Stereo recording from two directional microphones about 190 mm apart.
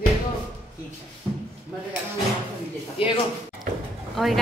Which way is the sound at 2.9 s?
30° left (ahead or behind).